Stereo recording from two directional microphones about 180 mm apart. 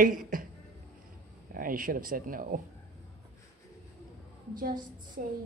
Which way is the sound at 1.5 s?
50° right (ahead or behind).